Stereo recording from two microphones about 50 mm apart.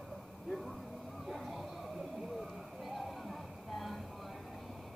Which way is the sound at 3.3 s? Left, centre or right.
Centre.